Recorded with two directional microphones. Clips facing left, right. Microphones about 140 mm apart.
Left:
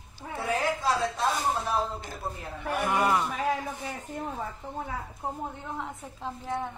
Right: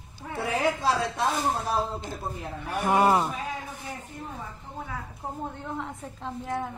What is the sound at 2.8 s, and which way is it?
Speech, 35° right (ahead or behind).